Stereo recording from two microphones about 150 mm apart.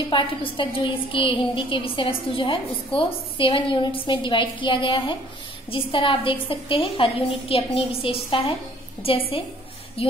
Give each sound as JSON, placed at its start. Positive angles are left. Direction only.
{"t": 0.1, "sound": "a woman's voice", "side_deg": 35}